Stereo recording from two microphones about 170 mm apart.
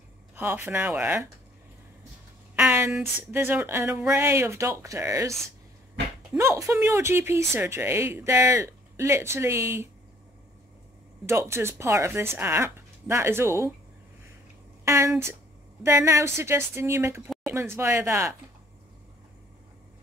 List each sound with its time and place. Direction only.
0.4 s speech: 10° right (ahead or behind)
2.6 s a sound: 10° right (ahead or behind)
3.3 s speech: 10° right (ahead or behind)
6.3 s speech: 15° right (ahead or behind)
11.2 s speech: 15° right (ahead or behind)
14.9 s speech: 15° right (ahead or behind)